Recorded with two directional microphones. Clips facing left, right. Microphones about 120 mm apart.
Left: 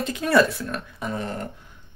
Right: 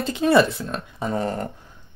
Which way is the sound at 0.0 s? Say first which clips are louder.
Right 2 dB; 25° right (ahead or behind).